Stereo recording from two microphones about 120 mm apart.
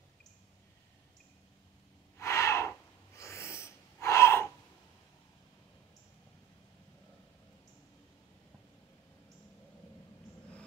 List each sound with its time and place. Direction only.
2.1 s gasp: 25° left (ahead or behind)